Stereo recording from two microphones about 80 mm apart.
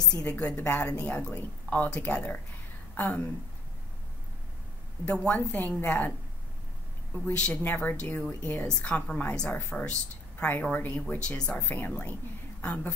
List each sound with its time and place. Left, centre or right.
0.1 s speech: centre
2.9 s a sound: left
5.0 s a woman's voice: centre
7.3 s a woman's voice: centre